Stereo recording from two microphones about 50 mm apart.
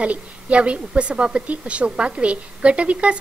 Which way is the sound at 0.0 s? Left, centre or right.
Right.